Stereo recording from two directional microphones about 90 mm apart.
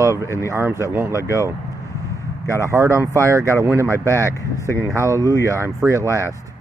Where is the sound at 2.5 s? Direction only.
35° right (ahead or behind).